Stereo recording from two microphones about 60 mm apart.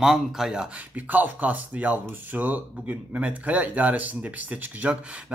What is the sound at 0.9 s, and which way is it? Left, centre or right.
Speech, right.